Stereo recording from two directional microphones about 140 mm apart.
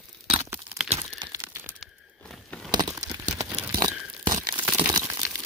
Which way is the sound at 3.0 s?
25° right (ahead or behind).